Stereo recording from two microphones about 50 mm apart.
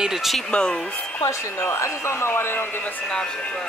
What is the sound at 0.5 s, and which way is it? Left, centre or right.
Speech, centre.